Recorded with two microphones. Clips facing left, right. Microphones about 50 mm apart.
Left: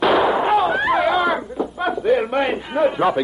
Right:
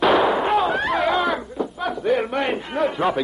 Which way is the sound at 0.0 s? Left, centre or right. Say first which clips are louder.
Left 1 dB; centre.